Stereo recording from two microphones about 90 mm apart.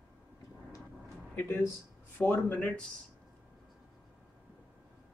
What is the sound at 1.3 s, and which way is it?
Speech, 25° left (ahead or behind).